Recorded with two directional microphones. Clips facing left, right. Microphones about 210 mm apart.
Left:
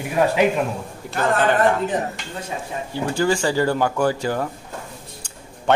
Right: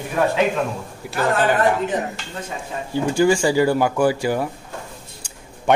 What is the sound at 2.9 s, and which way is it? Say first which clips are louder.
Speech: right 4 dB; 15° right (ahead or behind).